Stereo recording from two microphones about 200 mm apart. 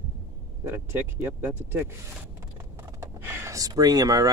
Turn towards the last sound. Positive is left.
turn(degrees=-20)  # may be behind; listen again after turning